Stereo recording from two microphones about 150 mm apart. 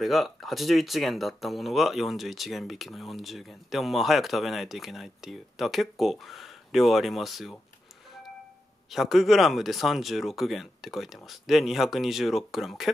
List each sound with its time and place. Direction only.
0.0 s speech: centre (ahead or behind)
8.9 s speech: centre (ahead or behind)